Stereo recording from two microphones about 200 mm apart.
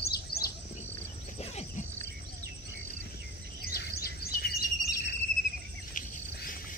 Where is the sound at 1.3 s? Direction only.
35° left (ahead or behind).